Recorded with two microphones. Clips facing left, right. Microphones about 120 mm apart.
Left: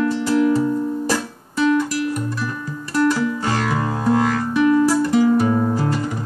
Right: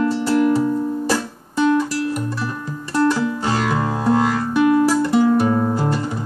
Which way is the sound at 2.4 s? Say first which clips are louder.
Even; 25° right (ahead or behind).